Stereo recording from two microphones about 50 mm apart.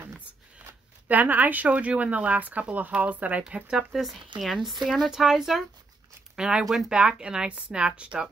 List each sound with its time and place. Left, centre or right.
1.0 s speech: right
3.9 s speech: centre
6.6 s speech: centre
6.9 s speech: centre